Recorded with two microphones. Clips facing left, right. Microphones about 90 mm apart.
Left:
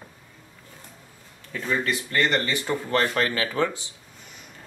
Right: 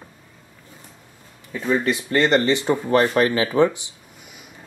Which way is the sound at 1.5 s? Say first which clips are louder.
Right 5 dB; 15° right (ahead or behind).